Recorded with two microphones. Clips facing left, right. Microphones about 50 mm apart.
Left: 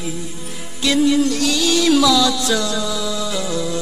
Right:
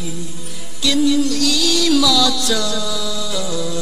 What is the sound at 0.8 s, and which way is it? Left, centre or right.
Music, left.